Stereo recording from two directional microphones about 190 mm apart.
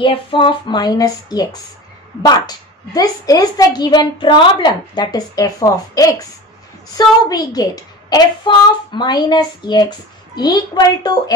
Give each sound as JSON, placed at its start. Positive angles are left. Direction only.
{"t": 0.0, "sound": "a woman's voice", "side_deg": 25}